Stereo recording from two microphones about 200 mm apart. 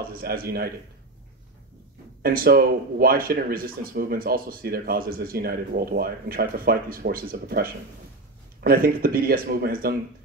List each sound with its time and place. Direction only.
0.1 s speech: 45° right (ahead or behind)
2.2 s speech: 50° right (ahead or behind)